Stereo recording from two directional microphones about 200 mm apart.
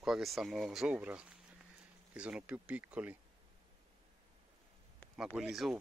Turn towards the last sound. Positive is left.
turn(degrees=0)  # may be behind; listen again after turning